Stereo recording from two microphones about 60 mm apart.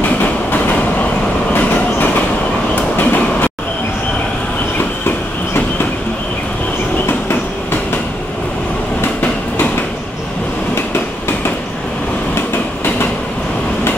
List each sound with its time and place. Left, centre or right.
0.2 s train: left
4.7 s train: left
7.1 s train: left
12.4 s train: left